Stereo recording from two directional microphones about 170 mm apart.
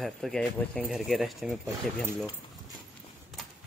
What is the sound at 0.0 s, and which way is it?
Speech, centre (ahead or behind).